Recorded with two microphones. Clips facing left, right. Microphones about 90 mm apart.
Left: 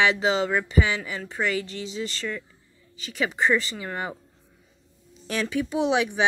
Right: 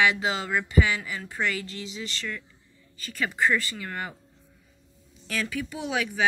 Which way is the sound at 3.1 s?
20° left (ahead or behind).